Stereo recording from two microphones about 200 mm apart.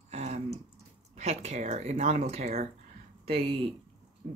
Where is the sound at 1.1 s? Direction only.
35° right (ahead or behind).